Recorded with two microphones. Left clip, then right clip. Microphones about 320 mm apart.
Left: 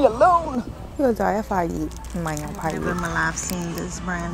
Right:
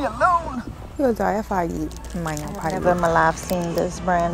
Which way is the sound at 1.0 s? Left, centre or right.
Centre.